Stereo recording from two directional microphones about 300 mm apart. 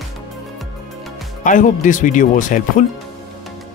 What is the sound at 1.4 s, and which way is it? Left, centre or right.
Speech, left.